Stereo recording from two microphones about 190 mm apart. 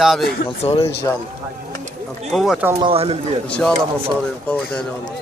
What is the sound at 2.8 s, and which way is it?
Speech, 30° right (ahead or behind).